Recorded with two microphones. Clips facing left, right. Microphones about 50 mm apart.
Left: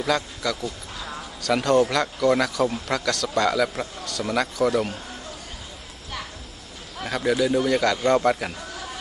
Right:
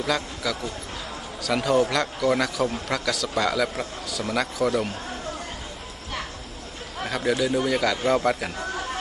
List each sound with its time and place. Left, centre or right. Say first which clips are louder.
0.0 s speech: left 2 dB; centre
7.0 s speech: left 2 dB; centre